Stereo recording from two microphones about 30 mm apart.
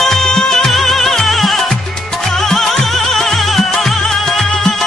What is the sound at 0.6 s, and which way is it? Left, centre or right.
Music, centre.